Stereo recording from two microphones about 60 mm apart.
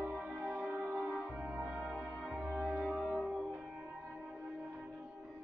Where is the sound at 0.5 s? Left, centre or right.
Right.